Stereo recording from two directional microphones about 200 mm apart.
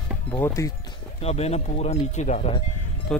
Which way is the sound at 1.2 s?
30° left (ahead or behind).